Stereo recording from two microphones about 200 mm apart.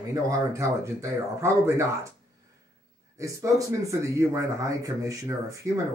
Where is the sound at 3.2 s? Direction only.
15° right (ahead or behind).